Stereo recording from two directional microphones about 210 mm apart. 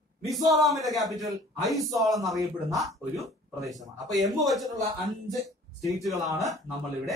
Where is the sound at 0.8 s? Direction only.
Centre (ahead or behind).